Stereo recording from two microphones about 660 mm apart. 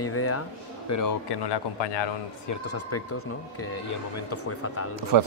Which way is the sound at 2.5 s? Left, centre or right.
Left.